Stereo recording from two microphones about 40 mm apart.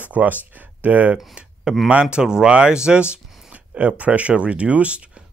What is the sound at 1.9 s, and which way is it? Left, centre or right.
Speech, right.